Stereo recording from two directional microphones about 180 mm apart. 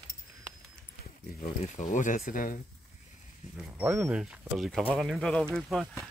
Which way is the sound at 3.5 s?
10° right (ahead or behind).